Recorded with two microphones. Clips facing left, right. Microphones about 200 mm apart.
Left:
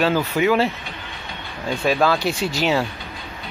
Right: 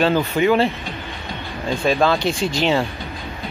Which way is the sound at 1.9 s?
5° left (ahead or behind).